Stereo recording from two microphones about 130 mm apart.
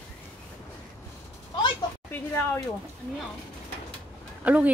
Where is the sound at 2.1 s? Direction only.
15° left (ahead or behind).